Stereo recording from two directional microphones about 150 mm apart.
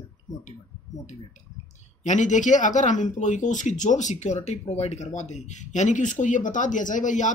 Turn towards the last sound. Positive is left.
turn(degrees=55)  # may be behind; listen again after turning